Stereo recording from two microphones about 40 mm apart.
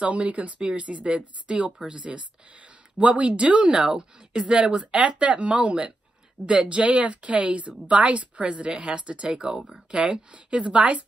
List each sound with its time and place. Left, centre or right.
0.0 s speech: right; by 9.8 s centre
9.8 s speech: right